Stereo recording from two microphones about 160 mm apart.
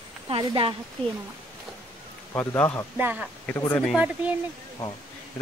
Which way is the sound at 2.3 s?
10° left (ahead or behind).